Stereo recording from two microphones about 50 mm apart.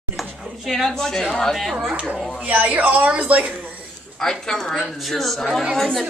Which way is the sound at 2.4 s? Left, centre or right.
Right.